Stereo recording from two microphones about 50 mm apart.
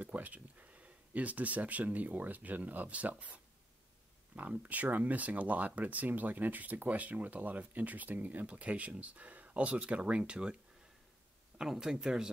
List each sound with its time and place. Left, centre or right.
0.0 s speech: right
4.4 s speech: right; by 12.3 s centre